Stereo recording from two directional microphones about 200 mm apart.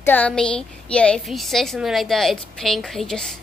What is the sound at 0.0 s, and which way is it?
A woman's voice, 10° left (ahead or behind).